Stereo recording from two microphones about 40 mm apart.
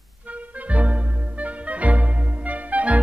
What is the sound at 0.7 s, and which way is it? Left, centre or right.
Music, right.